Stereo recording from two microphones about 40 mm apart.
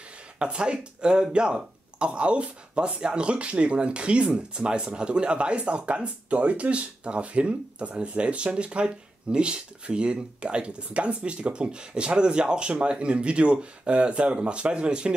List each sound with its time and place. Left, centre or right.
0.4 s speech: right